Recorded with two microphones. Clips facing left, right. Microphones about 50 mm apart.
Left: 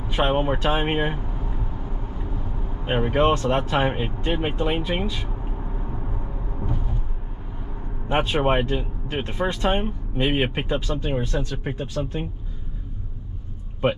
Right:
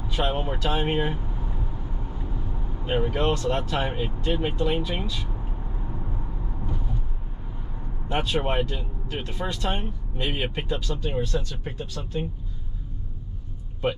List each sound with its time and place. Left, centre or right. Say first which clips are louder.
0.1 s speech: left 5 dB; left
2.8 s speech: left 4 dB; left
8.1 s speech: left 5 dB; left